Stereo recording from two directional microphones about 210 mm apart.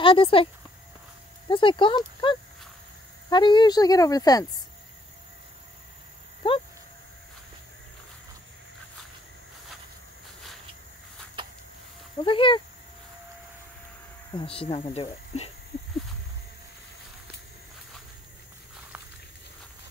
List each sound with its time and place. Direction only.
0.0 s speech: 25° left (ahead or behind)
1.5 s a woman's voice: 25° left (ahead or behind)
6.4 s a woman's voice: 25° left (ahead or behind)
11.4 s a sound: 25° right (ahead or behind)
12.2 s a woman's voice: 25° left (ahead or behind)
14.3 s a woman's voice: 25° left (ahead or behind)